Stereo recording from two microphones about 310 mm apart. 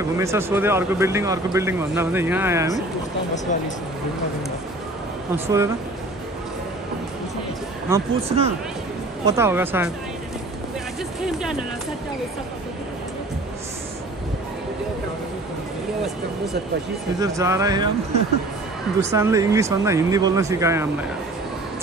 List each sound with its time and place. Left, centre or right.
0.2 s speech: centre
5.3 s speech: centre
7.9 s speech: centre
9.2 s speech: centre
17.2 s speech: centre
19.1 s speech: centre